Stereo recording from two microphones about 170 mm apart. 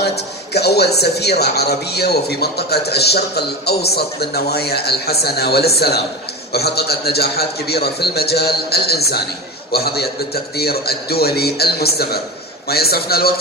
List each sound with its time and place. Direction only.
0.0 s speech: 75° left (ahead or behind)